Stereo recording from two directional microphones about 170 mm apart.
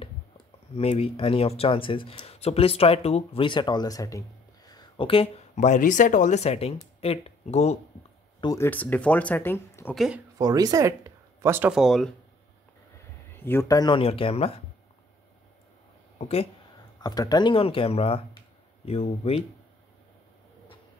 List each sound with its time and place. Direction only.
0.7 s speech: 35° left (ahead or behind)
8.4 s speech: 20° left (ahead or behind)
8.6 s speech: 10° left (ahead or behind)
9.9 s speech: 5° right (ahead or behind)
10.3 s speech: 20° right (ahead or behind)
11.7 s speech: centre (ahead or behind)
13.3 s speech: 15° left (ahead or behind); by 14.6 s 35° left (ahead or behind)
16.2 s speech: 35° left (ahead or behind)
17.0 s speech: 25° left (ahead or behind)